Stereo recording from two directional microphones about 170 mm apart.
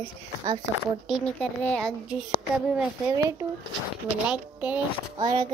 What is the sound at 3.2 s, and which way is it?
Speech, 20° right (ahead or behind).